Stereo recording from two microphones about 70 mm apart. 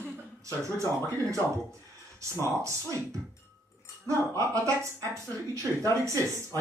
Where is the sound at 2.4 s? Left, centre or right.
Right.